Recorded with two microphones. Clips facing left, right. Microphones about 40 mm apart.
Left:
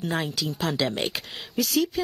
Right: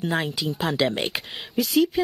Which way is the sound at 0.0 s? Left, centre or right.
Centre.